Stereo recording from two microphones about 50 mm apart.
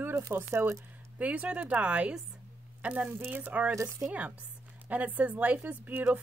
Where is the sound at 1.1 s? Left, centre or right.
Right.